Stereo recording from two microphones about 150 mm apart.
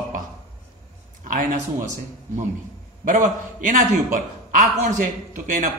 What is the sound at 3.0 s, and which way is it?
A man's voice, 60° right (ahead or behind).